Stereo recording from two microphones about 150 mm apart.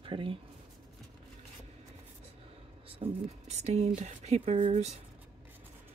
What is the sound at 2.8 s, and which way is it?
Speech, 45° right (ahead or behind).